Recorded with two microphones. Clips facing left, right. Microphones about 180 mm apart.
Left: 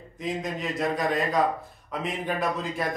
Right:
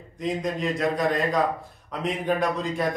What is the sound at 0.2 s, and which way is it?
A man's voice, centre (ahead or behind).